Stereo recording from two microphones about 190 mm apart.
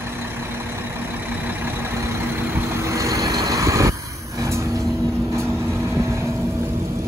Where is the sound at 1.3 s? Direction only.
10° right (ahead or behind).